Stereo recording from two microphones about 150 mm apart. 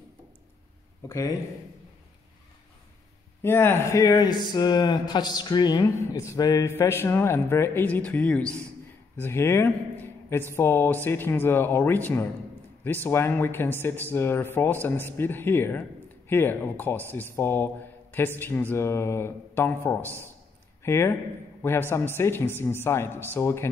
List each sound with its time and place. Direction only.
1.0 s speech: 20° left (ahead or behind)
3.4 s a man's voice: 15° left (ahead or behind)